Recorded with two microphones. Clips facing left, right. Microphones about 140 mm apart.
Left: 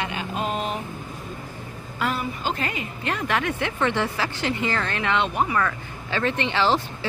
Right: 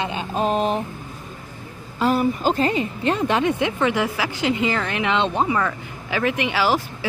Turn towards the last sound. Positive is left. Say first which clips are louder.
# right 1 dB
turn(degrees=-10)  # may be behind; listen again after turning